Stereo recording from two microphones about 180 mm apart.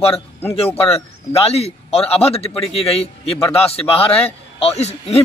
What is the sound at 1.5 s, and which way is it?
A man's voice, 35° left (ahead or behind).